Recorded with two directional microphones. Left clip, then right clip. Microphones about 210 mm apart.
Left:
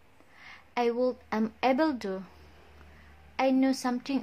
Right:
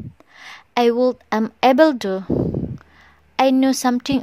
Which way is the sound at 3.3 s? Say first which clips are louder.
Right 10 dB; 40° right (ahead or behind).